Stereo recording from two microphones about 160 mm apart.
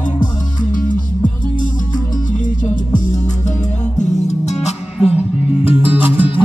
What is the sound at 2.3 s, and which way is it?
Music, 55° left (ahead or behind).